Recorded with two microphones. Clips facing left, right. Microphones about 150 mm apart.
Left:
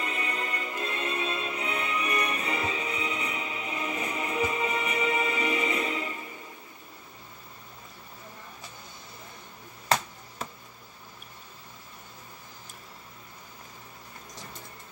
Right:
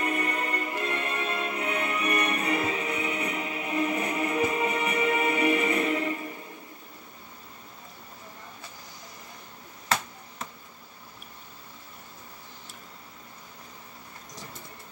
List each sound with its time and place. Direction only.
0.0 s music: 50° right (ahead or behind)